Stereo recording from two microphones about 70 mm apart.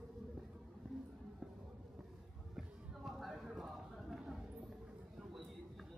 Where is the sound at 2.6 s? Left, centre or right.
Centre.